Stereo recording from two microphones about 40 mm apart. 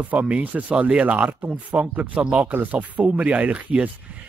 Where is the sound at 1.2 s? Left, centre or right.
Right.